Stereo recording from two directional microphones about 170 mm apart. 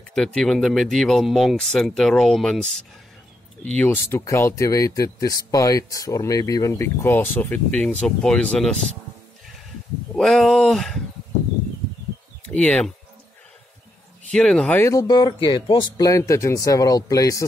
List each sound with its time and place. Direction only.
0.1 s speech: 5° left (ahead or behind)
10.1 s speech: centre (ahead or behind)
12.4 s speech: 10° left (ahead or behind)
14.3 s speech: 5° left (ahead or behind)
14.8 s speech: 20° left (ahead or behind)